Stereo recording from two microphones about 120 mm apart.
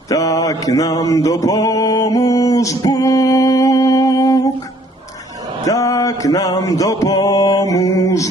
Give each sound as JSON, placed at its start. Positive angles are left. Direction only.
{"t": 0.1, "sound": "mantra", "side_deg": 30}
{"t": 5.7, "sound": "music", "side_deg": 30}